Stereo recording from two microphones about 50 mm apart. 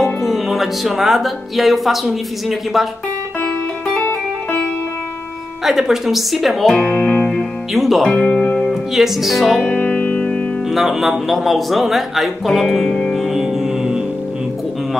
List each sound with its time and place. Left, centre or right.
0.0 s speech: centre
5.6 s speech: centre
6.9 s music: left
7.7 s speech: centre
8.1 s speech: centre
8.9 s speech: centre
9.8 s music: left
10.7 s speech: centre